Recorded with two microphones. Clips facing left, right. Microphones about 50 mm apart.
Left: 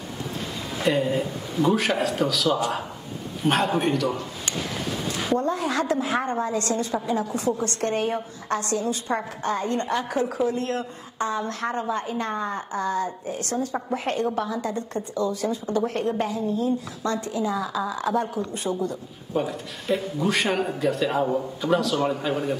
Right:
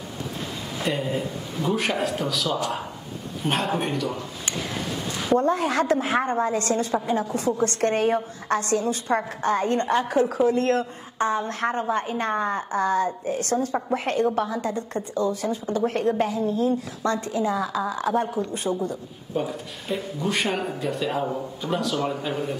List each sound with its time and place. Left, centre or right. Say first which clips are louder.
0.9 s speech: left 3 dB; centre
5.3 s a woman's voice: right 4 dB; right
10.5 s speech: right 5 dB; right
11.1 s a woman's voice: right 3 dB; right
16.4 s speech: right 1 dB; right
17.0 s a woman's voice: right 3 dB; right
19.3 s speech: left 1 dB; centre